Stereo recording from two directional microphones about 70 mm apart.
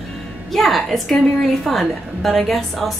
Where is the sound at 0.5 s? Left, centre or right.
Centre.